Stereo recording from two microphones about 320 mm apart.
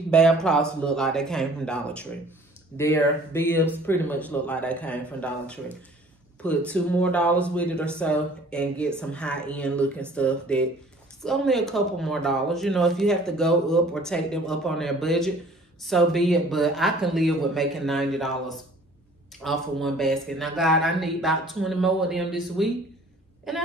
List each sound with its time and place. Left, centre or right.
0.1 s speech: centre
19.4 s speech: centre